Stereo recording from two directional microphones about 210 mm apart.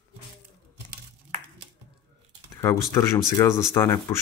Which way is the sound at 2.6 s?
15° left (ahead or behind).